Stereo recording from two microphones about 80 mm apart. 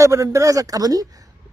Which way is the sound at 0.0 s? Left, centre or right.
Right.